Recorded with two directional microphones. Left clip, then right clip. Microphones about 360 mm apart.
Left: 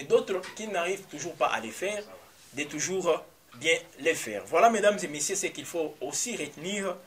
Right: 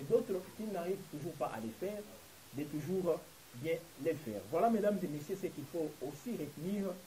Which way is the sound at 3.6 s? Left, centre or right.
Centre.